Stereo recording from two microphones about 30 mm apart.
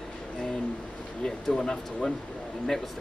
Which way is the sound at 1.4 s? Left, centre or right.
Centre.